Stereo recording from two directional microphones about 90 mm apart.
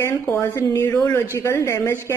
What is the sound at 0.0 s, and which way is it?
A woman's voice, 30° left (ahead or behind).